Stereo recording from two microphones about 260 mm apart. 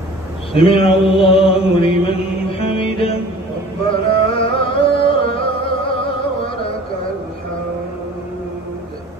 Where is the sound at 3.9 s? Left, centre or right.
Left.